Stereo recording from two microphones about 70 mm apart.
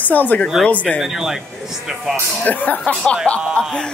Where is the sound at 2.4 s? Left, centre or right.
Left.